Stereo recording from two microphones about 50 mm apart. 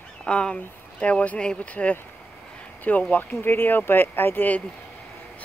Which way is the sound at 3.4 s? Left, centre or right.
Left.